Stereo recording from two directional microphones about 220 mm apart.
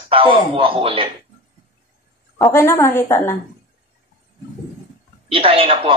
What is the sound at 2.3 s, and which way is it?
A woman's voice, 10° left (ahead or behind).